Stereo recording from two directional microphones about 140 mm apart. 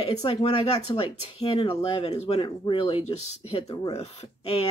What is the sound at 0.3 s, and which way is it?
Speech, 45° left (ahead or behind).